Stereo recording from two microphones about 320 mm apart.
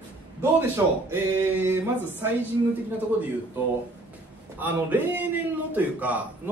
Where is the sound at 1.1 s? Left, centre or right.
Centre.